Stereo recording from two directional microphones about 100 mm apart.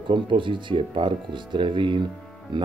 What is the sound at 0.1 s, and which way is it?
Speech, 55° right (ahead or behind).